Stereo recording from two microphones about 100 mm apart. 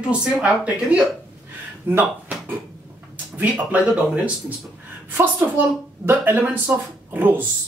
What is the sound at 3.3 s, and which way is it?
Speech, 15° right (ahead or behind).